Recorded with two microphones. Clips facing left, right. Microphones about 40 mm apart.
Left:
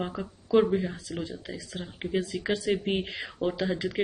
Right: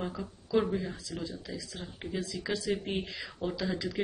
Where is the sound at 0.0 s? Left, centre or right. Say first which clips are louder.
Left 3 dB; left.